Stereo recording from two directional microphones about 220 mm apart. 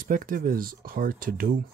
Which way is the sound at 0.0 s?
40° right (ahead or behind).